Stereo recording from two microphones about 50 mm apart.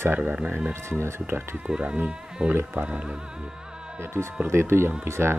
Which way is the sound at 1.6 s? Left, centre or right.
Right.